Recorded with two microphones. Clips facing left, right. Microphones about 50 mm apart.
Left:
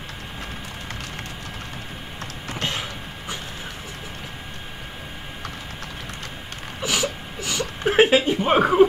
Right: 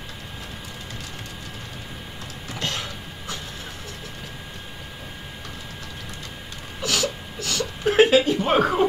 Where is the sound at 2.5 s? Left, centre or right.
Centre.